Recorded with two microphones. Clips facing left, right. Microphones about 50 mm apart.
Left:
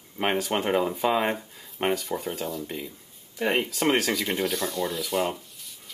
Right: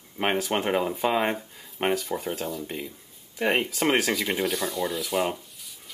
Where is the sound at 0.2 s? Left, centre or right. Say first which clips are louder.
Even; centre.